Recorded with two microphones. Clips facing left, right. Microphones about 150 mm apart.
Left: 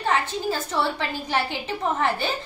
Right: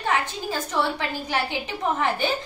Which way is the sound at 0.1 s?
10° right (ahead or behind).